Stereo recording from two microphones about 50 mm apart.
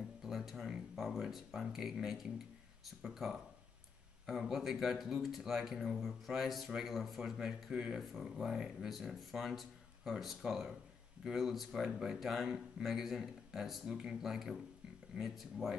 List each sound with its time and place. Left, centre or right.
0.2 s speech: centre